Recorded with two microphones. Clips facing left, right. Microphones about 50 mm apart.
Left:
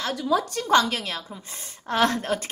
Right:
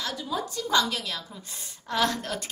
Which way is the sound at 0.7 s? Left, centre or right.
Left.